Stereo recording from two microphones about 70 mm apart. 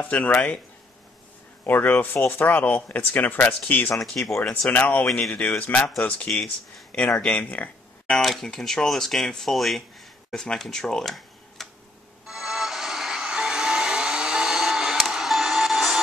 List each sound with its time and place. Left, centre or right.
0.1 s speech: left
1.7 s speech: left
4.1 s speech: centre
4.6 s speech: left
8.1 s speech: centre
12.3 s vehicle: centre
15.1 s music: centre